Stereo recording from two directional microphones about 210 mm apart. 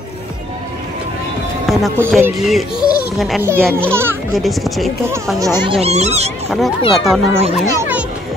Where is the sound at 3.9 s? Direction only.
10° right (ahead or behind).